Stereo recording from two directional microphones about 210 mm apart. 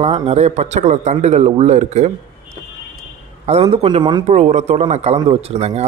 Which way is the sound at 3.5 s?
30° right (ahead or behind).